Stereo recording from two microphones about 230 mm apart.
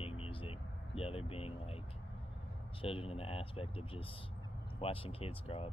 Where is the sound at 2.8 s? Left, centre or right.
Left.